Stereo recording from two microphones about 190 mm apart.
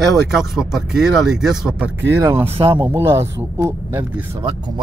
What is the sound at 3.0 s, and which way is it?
Speech, 15° right (ahead or behind).